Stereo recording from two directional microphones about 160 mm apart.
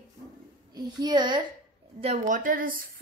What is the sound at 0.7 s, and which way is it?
Speech, 25° right (ahead or behind).